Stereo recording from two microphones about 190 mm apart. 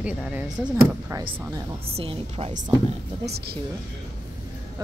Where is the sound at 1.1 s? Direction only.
25° right (ahead or behind).